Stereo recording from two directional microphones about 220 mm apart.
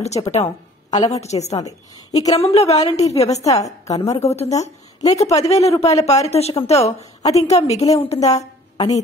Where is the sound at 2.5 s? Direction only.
30° left (ahead or behind).